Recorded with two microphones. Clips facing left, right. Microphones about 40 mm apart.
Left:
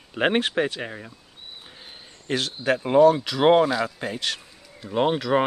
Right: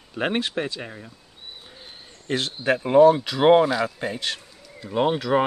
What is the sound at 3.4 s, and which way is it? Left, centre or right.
Speech, centre.